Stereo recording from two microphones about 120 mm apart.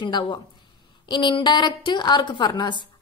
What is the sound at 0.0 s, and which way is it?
A woman's voice, 40° left (ahead or behind).